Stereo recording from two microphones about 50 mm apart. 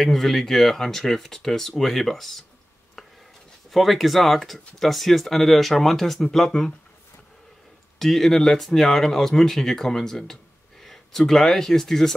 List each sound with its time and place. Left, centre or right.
0.0 s speech: centre
3.0 s chopping: centre
3.7 s speech: centre
8.0 s speech: centre